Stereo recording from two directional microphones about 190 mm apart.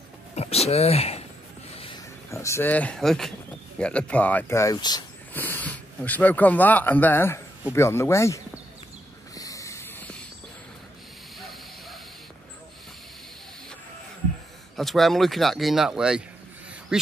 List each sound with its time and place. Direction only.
0.4 s speech: 35° left (ahead or behind)
2.3 s speech: 15° left (ahead or behind)
5.3 s speech: 10° left (ahead or behind)
9.3 s a sound: 20° left (ahead or behind)
11.3 s a sound: centre (ahead or behind)
14.8 s a man's voice: centre (ahead or behind)